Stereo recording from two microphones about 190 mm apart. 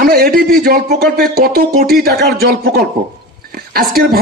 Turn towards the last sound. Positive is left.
turn(degrees=-50)  # may be behind; listen again after turning